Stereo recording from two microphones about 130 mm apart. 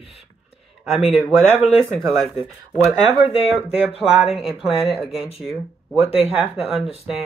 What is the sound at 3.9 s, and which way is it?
Speech, 50° left (ahead or behind).